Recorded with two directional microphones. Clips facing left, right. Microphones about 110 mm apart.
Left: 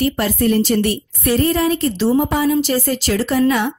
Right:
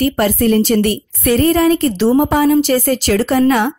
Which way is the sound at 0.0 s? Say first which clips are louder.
Right 3 dB; 50° right (ahead or behind).